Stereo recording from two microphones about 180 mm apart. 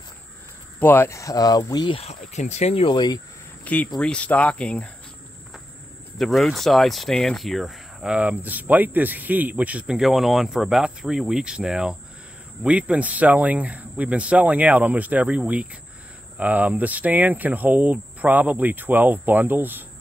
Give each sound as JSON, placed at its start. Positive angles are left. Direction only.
{"t": 0.7, "sound": "speech", "side_deg": 10}
{"t": 3.6, "sound": "speech", "side_deg": 10}
{"t": 6.1, "sound": "speech", "side_deg": 0}